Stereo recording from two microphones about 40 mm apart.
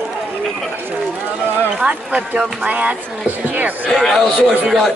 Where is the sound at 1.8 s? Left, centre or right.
Right.